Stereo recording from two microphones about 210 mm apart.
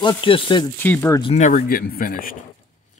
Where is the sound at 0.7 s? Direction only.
10° left (ahead or behind).